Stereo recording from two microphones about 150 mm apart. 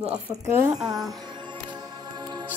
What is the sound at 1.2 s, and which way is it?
Music, 30° right (ahead or behind).